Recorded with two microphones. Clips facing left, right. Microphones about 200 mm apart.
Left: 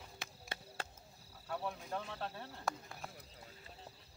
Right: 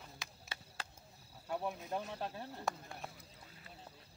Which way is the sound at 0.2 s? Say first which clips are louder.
Left 7 dB; 55° left (ahead or behind).